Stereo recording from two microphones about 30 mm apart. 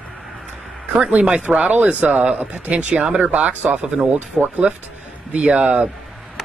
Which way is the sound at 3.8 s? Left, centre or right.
Right.